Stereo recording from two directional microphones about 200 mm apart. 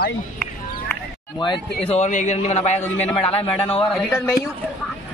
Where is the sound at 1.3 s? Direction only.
25° left (ahead or behind).